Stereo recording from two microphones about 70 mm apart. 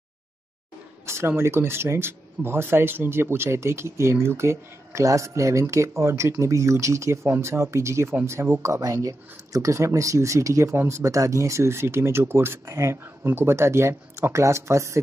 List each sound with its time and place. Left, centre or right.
1.0 s speech: right
8.8 s speech: right